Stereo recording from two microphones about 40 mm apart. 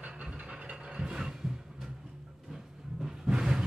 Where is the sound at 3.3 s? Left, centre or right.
Centre.